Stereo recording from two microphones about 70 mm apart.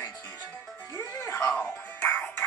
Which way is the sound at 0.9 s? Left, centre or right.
Left.